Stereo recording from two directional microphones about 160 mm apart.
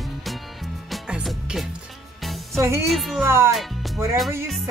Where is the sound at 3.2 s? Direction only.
15° right (ahead or behind).